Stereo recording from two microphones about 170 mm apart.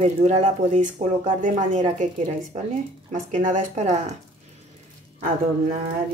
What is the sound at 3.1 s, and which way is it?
A woman's voice, 50° right (ahead or behind).